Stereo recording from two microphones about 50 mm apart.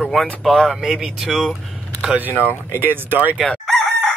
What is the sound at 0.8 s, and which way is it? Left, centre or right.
Speech, centre.